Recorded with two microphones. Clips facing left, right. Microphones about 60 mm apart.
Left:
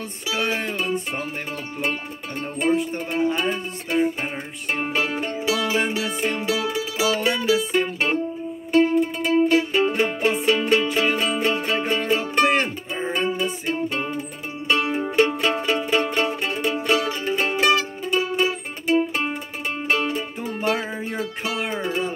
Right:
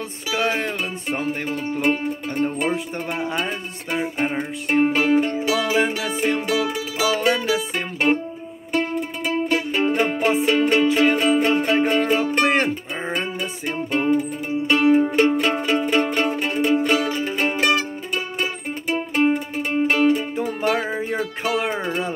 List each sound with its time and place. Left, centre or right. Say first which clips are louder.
1.8 s music: right 6 dB; right
3.3 s a sound: left 3 dB; right
4.2 s music: right 6 dB; right
13.7 s music: right 6 dB; right